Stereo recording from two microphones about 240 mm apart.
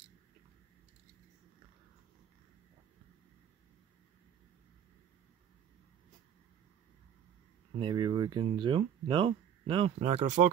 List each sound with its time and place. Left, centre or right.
7.8 s speech: centre